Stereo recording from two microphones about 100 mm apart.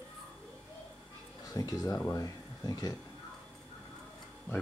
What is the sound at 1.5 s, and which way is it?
Speech, 40° left (ahead or behind).